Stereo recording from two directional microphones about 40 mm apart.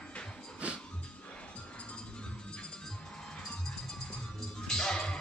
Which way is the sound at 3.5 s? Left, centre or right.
Centre.